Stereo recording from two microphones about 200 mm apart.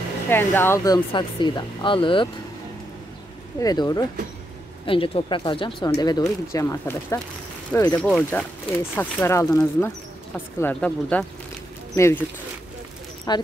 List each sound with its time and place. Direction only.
0.3 s speech: 10° left (ahead or behind)
3.5 s speech: 20° left (ahead or behind)
8.0 s speech: 5° left (ahead or behind)
13.3 s speech: 20° left (ahead or behind)